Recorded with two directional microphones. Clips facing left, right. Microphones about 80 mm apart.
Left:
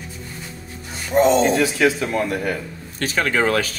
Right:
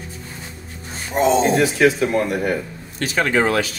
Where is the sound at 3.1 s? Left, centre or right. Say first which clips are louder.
Right 1 dB; right.